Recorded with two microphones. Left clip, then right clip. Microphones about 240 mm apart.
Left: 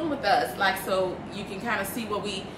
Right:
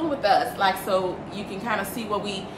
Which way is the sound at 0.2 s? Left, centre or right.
Centre.